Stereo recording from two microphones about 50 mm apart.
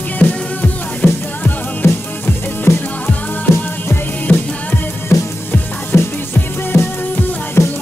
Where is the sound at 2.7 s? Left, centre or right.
Left.